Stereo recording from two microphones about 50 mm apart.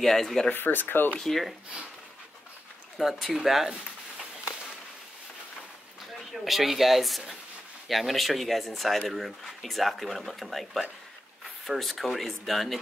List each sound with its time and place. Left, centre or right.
0.0 s speech: centre
0.5 s speech: left
1.1 s speech: centre
3.0 s speech: centre
6.1 s speech: centre